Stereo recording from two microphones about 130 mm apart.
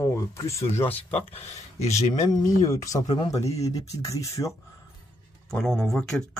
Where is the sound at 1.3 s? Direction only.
60° left (ahead or behind).